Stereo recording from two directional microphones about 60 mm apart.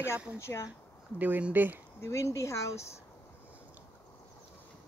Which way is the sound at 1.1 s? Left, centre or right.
Right.